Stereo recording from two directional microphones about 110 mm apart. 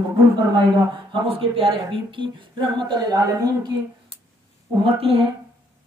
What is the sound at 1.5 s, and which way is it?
A woman's voice, 50° right (ahead or behind).